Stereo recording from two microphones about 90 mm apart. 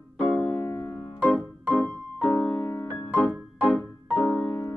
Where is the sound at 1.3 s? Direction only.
Centre (ahead or behind).